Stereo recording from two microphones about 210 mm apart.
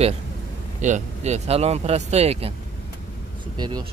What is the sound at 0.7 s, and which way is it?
Speech, 35° right (ahead or behind).